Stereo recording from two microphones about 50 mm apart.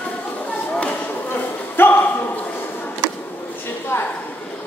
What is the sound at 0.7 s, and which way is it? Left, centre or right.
Chop, left.